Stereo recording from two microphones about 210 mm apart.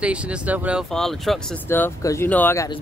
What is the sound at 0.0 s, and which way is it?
Speech, 5° right (ahead or behind).